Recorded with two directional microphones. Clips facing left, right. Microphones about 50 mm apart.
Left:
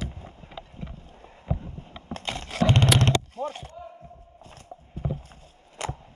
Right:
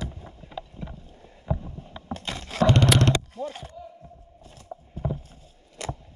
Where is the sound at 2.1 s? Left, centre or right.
Left.